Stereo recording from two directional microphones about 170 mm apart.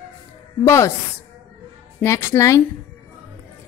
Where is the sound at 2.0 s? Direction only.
15° left (ahead or behind).